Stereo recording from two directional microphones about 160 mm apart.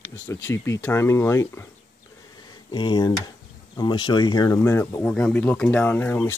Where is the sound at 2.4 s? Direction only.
30° left (ahead or behind).